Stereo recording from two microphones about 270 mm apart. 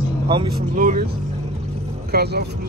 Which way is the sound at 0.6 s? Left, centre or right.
Right.